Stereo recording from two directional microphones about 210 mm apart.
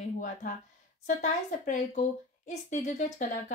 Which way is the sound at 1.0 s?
35° left (ahead or behind).